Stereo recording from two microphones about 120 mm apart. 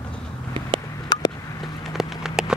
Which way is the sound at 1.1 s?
35° left (ahead or behind).